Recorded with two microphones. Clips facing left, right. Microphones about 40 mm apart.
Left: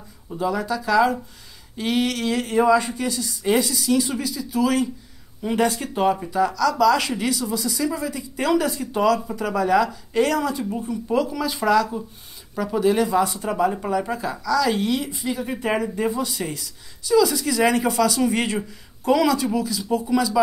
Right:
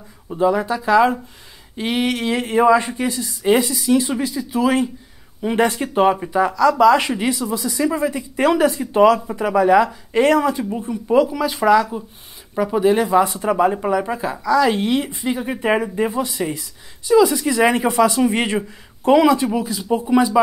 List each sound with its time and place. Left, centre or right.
0.3 s speech: right
5.7 s speech: right
11.1 s speech: centre
13.7 s speech: right